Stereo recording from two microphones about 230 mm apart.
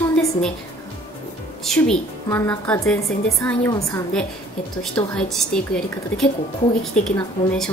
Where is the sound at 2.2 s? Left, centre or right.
Centre.